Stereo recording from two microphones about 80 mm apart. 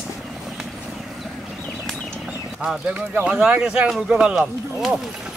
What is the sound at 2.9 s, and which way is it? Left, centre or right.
Speech, centre.